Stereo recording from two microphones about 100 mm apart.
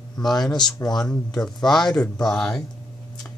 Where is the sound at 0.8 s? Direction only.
45° left (ahead or behind).